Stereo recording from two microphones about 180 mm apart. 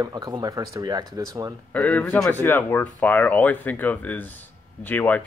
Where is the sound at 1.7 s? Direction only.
10° left (ahead or behind).